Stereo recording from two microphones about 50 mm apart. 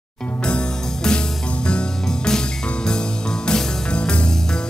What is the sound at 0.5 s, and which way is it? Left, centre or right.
Music, centre.